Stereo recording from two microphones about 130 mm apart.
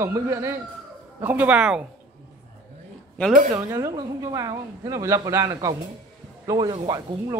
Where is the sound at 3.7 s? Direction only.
25° right (ahead or behind).